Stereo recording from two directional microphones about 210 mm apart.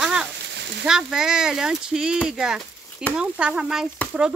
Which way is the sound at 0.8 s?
Centre (ahead or behind).